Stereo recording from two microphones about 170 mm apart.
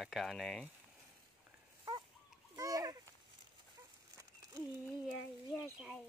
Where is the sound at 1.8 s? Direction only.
20° right (ahead or behind).